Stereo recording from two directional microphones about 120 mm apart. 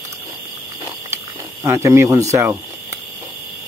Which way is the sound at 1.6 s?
25° right (ahead or behind).